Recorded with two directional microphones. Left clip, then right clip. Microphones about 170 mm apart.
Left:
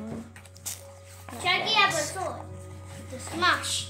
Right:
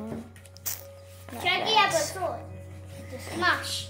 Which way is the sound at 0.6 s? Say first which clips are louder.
Right 2 dB; 10° right (ahead or behind).